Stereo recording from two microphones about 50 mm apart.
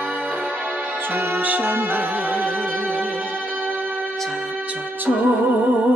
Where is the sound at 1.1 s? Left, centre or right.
Right.